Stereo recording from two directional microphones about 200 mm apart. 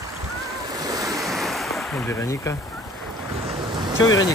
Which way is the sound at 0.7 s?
15° right (ahead or behind).